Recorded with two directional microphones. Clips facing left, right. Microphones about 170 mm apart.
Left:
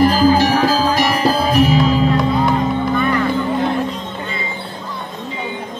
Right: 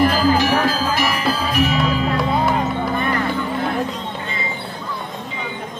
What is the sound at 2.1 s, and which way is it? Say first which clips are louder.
Music: left 3 dB; centre (ahead or behind).